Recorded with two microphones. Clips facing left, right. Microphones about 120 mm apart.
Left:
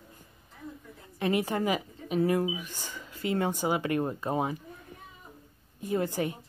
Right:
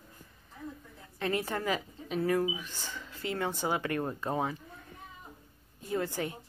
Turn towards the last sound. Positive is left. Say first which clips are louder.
# left 4 dB
turn(degrees=15)  # may be behind; listen again after turning